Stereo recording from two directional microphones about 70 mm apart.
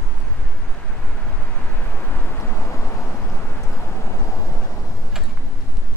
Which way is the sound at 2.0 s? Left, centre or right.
Left.